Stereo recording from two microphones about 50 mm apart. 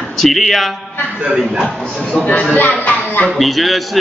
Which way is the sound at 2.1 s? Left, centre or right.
Left.